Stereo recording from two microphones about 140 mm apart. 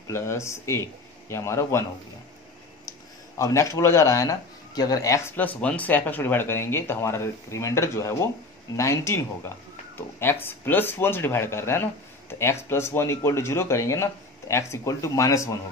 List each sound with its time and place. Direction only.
0.1 s speech: 20° left (ahead or behind)
3.3 s speech: 20° left (ahead or behind)